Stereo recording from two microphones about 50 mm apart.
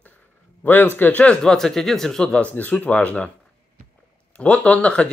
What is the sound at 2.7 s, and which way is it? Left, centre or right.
Speech, left.